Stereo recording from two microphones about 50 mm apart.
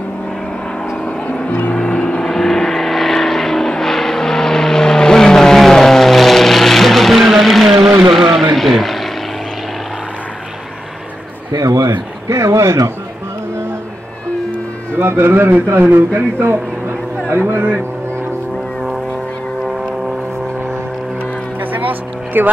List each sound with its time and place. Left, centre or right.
1.8 s vehicle: centre
2.2 s vehicle: centre
12.3 s a sound: right
15.0 s a man's voice: right
17.3 s a sound: right
22.3 s a man's voice: right